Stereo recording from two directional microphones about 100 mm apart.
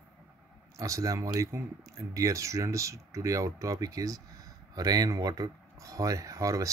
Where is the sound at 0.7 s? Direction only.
35° right (ahead or behind).